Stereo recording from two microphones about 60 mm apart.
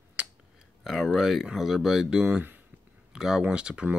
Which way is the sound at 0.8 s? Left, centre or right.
Centre.